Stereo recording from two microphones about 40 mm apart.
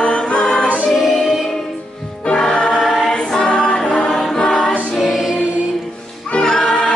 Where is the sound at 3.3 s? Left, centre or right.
Left.